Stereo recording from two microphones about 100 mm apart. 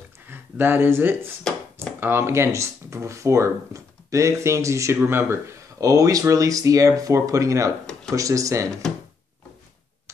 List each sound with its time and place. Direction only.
0.3 s speech: 20° right (ahead or behind)